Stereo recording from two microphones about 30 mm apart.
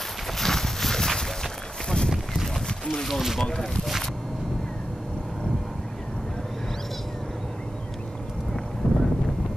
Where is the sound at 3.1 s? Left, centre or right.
Centre.